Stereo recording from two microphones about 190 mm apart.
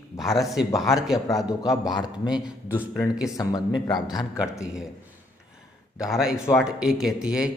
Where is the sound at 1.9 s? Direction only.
20° left (ahead or behind).